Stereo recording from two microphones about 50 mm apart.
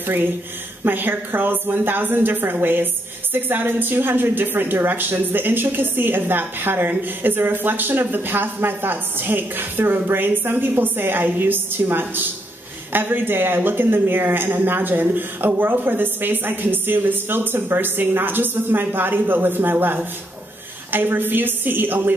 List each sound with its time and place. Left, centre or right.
0.0 s a woman's voice: right